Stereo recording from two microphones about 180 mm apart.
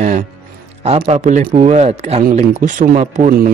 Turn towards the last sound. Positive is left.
turn(degrees=-45)  # may be behind; listen again after turning